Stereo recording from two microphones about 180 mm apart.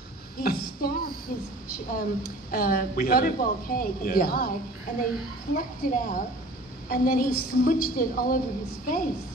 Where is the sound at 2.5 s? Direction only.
55° left (ahead or behind).